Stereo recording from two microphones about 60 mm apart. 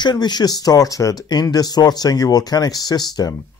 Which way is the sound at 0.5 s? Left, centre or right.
Left.